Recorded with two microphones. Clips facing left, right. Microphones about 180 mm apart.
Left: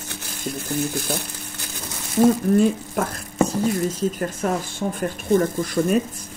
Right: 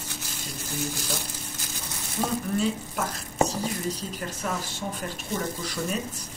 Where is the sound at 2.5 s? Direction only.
50° left (ahead or behind).